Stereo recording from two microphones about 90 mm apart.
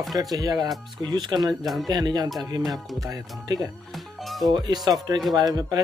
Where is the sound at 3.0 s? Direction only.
45° right (ahead or behind).